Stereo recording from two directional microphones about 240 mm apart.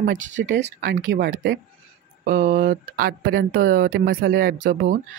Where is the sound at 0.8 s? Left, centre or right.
Right.